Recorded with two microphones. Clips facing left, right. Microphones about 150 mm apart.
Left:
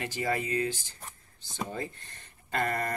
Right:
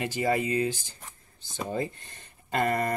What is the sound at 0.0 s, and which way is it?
Speech, 15° right (ahead or behind).